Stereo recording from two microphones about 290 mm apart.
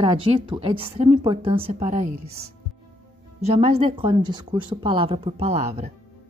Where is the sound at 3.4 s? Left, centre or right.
Right.